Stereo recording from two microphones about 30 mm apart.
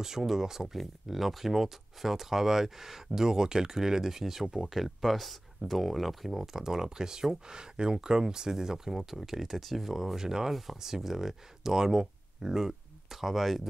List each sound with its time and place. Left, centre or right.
0.0 s speech: centre
0.7 s speech: centre
10.1 s speech: centre